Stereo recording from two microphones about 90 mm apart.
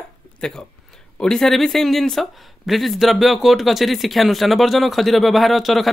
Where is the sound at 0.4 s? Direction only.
10° left (ahead or behind).